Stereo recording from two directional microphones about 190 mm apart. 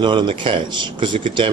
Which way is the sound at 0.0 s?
25° right (ahead or behind).